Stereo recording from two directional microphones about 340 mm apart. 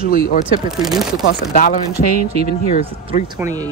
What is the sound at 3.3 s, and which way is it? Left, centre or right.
Speech, centre.